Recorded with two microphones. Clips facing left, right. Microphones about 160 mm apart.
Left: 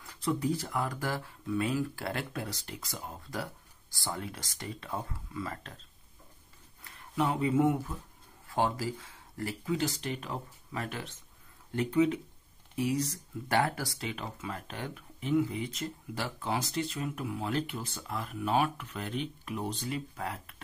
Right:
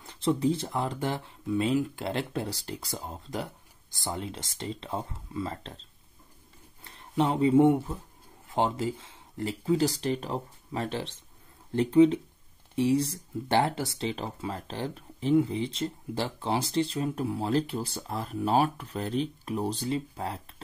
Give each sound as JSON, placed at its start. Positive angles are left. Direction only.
{"t": 0.0, "sound": "speech", "side_deg": -25}
{"t": 6.8, "sound": "speech", "side_deg": -30}
{"t": 9.8, "sound": "speech", "side_deg": -35}